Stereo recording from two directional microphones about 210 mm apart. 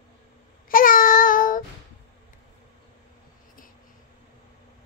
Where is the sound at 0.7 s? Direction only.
40° left (ahead or behind).